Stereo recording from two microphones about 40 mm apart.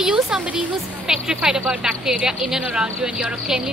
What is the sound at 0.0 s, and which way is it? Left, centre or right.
A woman's voice, centre.